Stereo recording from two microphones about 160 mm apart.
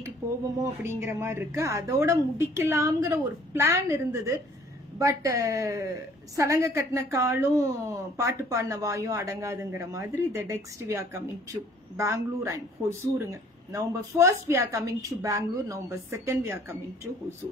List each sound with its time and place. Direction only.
0.6 s a woman's voice: 15° right (ahead or behind)